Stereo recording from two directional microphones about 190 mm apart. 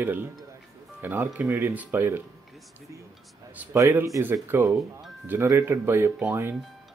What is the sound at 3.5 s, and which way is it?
Speech, 10° right (ahead or behind).